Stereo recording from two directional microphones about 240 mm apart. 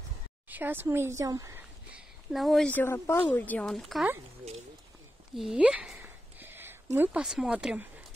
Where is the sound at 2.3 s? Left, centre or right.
Centre.